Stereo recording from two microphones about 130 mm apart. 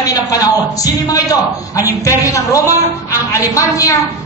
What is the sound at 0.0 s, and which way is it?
A man's voice, 30° left (ahead or behind).